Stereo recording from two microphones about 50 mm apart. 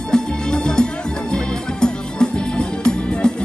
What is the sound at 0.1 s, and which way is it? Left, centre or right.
Music, centre.